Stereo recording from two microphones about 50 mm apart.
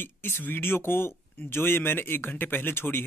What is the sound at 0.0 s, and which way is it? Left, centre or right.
Speech, left.